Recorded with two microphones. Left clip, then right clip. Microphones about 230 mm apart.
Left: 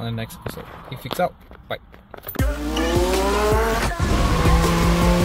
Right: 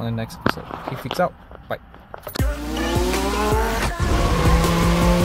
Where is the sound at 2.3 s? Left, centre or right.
Centre.